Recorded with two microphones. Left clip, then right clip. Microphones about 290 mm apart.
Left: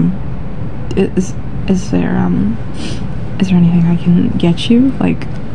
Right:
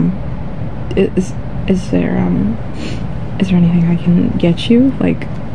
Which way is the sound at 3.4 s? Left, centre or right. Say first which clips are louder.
Left 1 dB; centre.